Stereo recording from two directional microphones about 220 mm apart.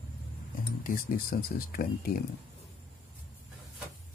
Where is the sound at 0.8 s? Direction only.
40° left (ahead or behind).